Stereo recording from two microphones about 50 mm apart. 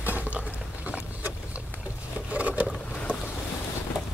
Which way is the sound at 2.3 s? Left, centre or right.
Right.